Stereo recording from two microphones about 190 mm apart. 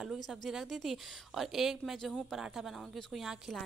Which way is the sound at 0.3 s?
Centre (ahead or behind).